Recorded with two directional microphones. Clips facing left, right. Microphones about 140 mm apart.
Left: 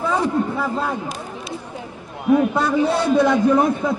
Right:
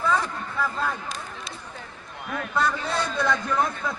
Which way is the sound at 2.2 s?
20° left (ahead or behind).